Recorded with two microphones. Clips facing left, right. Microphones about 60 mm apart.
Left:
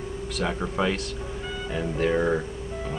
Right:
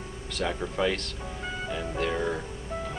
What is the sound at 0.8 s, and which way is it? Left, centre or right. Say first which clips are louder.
Speech: left 1 dB; centre.